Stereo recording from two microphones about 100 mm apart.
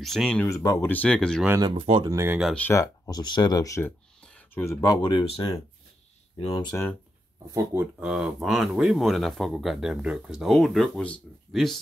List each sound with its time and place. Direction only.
0.0 s speech: 5° left (ahead or behind)
0.5 s speech: 35° left (ahead or behind)
0.8 s speech: 15° left (ahead or behind)
1.6 s speech: 55° right (ahead or behind)
2.0 s speech: 30° right (ahead or behind)
2.7 s speech: 35° left (ahead or behind)
4.6 s speech: 25° left (ahead or behind)
4.8 s speech: 45° left (ahead or behind)
5.2 s speech: 70° left (ahead or behind)
6.7 s speech: 20° left (ahead or behind)
7.5 s speech: 25° right (ahead or behind)
8.0 s speech: 5° right (ahead or behind)